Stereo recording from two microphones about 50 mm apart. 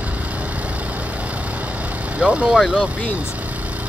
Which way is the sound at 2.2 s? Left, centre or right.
Right.